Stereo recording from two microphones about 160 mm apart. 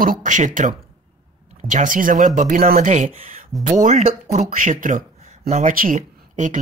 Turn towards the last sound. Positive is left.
turn(degrees=-50)  # may be behind; listen again after turning